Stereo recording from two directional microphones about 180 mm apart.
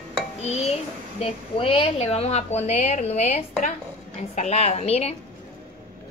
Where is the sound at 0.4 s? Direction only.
35° left (ahead or behind).